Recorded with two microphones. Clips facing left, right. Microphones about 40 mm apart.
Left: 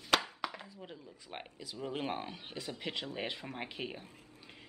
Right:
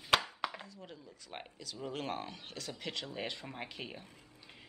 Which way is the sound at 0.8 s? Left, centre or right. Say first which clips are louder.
Left 2 dB; centre.